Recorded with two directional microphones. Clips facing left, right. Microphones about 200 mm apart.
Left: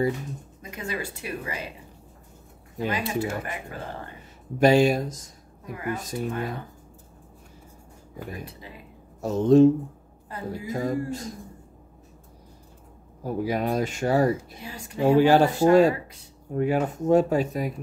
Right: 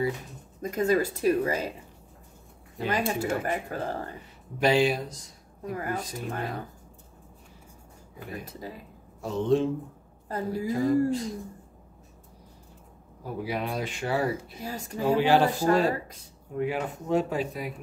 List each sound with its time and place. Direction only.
0.6 s speech: 45° right (ahead or behind)
2.9 s speech: 45° right (ahead or behind)
4.6 s speech: 45° left (ahead or behind)
5.7 s speech: 40° right (ahead or behind)
5.9 s speech: 45° left (ahead or behind)
8.5 s speech: 40° right (ahead or behind)
9.2 s speech: 45° left (ahead or behind)
10.2 s a woman's voice: 40° right (ahead or behind)
10.7 s speech: 45° left (ahead or behind)
13.2 s speech: 45° left (ahead or behind)
14.6 s speech: 40° right (ahead or behind)
15.0 s speech: 45° left (ahead or behind)